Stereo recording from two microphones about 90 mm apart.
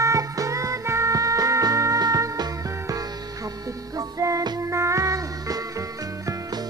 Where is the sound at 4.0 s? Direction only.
35° right (ahead or behind).